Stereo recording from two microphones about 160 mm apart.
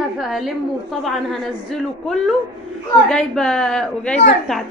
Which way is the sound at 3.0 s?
5° left (ahead or behind).